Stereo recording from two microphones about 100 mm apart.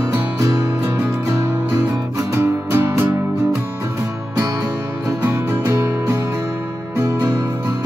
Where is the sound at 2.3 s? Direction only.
25° right (ahead or behind).